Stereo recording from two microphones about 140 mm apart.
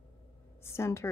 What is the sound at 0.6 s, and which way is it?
Speech, 20° left (ahead or behind).